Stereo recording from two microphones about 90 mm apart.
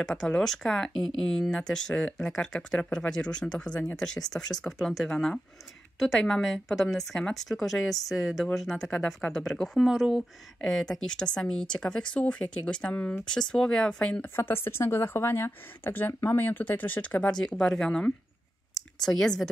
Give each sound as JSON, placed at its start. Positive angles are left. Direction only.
{"t": 0.0, "sound": "a woman's voice", "side_deg": 10}
{"t": 14.2, "sound": "a woman's voice", "side_deg": 25}